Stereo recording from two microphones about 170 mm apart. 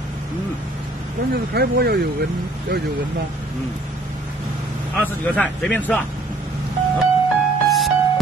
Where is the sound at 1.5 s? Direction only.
70° right (ahead or behind).